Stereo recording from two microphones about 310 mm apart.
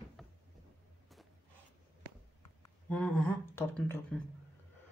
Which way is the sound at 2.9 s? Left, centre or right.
Centre.